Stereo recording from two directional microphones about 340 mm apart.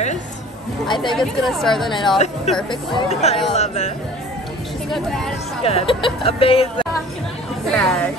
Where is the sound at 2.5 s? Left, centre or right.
Centre.